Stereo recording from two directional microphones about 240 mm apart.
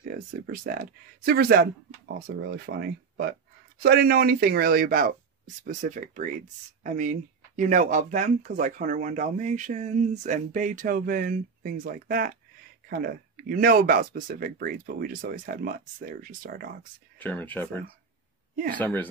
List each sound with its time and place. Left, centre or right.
0.1 s speech: right
3.8 s speech: right
17.2 s speech: centre
18.8 s speech: centre